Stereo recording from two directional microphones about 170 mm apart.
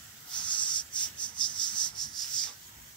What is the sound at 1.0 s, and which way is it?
Cricket, 25° left (ahead or behind).